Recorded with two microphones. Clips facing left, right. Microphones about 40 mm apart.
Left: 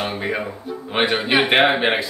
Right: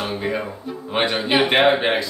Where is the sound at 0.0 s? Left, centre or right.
Left.